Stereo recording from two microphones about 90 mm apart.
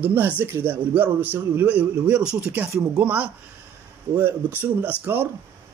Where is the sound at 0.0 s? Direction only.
20° right (ahead or behind).